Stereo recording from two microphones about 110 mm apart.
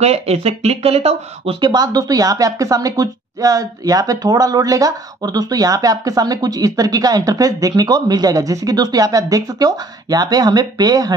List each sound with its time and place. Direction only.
0.0 s speech: 70° right (ahead or behind)
1.6 s speech: 40° right (ahead or behind)